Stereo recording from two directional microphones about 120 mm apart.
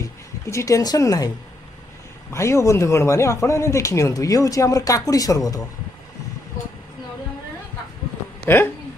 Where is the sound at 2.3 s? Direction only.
25° left (ahead or behind).